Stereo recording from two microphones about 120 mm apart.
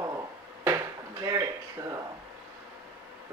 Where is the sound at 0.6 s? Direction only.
25° right (ahead or behind).